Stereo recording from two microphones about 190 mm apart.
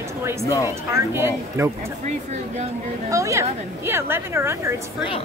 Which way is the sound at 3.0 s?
15° right (ahead or behind).